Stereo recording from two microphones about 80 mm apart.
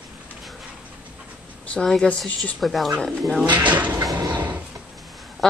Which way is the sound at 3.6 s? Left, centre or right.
Right.